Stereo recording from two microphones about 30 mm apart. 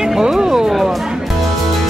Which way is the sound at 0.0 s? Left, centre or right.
Centre.